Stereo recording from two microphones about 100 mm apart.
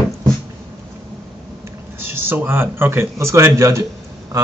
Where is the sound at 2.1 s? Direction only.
20° right (ahead or behind).